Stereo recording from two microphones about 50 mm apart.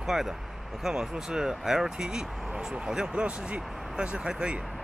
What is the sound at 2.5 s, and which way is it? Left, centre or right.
Speech, centre.